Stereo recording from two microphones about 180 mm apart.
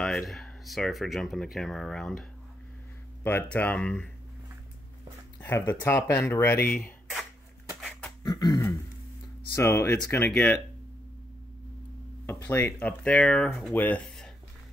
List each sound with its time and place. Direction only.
0.0 s speech: centre (ahead or behind)
3.3 s speech: 10° left (ahead or behind)
5.4 s speech: 15° left (ahead or behind)
8.2 s a sound: 25° left (ahead or behind)
9.6 s speech: 15° left (ahead or behind)
12.3 s speech: 10° left (ahead or behind)